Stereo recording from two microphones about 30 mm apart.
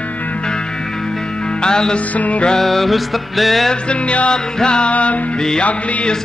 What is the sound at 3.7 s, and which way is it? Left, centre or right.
Music, left.